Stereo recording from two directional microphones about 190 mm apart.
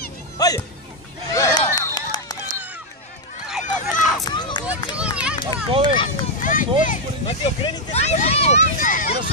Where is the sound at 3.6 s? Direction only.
40° left (ahead or behind).